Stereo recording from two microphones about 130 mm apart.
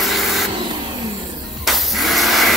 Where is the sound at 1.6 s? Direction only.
Centre (ahead or behind).